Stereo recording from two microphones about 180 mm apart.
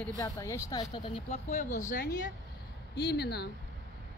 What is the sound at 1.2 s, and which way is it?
Speech, 40° left (ahead or behind).